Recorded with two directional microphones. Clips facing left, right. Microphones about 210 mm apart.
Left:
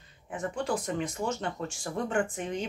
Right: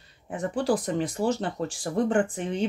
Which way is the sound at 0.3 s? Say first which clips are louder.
Right 6 dB; 35° right (ahead or behind).